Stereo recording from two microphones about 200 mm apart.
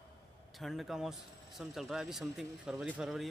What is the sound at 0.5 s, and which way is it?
A man's voice, centre (ahead or behind).